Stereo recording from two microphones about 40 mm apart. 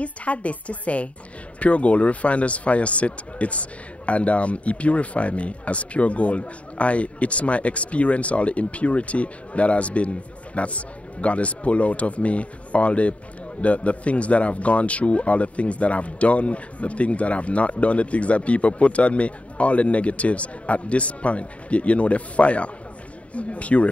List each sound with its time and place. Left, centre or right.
0.0 s speech: left